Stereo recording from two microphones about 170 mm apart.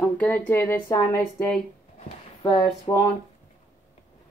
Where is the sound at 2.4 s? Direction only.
20° left (ahead or behind).